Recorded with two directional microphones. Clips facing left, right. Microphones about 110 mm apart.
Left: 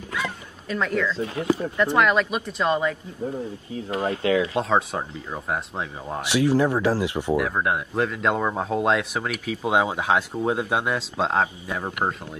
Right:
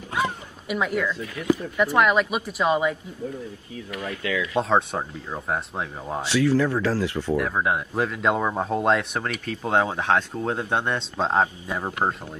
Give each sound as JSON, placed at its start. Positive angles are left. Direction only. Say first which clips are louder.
{"t": 0.7, "sound": "speech", "louder": "even", "side_deg": -10}
{"t": 1.1, "sound": "speech", "louder": "left 1 dB", "side_deg": 25}
{"t": 1.8, "sound": "speech", "louder": "even", "side_deg": -5}
{"t": 3.7, "sound": "speech", "louder": "left 7 dB", "side_deg": 30}
{"t": 4.6, "sound": "speech", "louder": "right 1 dB", "side_deg": 0}
{"t": 6.2, "sound": "speech", "louder": "left 1 dB", "side_deg": 15}
{"t": 7.3, "sound": "speech", "louder": "right 1 dB", "side_deg": 0}